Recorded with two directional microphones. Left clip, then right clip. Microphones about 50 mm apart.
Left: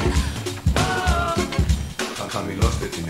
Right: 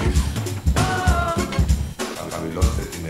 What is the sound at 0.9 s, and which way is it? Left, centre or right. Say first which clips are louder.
Music: right 1 dB; right.